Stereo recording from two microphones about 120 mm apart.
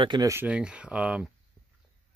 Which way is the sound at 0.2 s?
25° right (ahead or behind).